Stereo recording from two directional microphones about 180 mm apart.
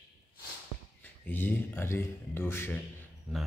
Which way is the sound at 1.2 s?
10° left (ahead or behind).